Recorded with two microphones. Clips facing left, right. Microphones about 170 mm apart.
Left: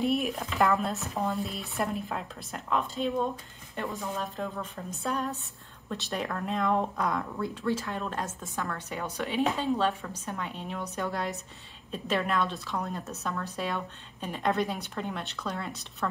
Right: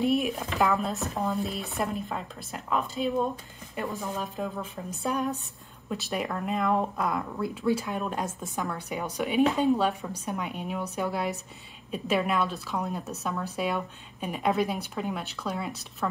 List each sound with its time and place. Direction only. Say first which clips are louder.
0.0 s a sound: right 2 dB; centre (ahead or behind)
0.6 s speech: even; centre (ahead or behind)
5.0 s speech: right 3 dB; 15° right (ahead or behind)
5.9 s speech: right 2 dB; 5° right (ahead or behind)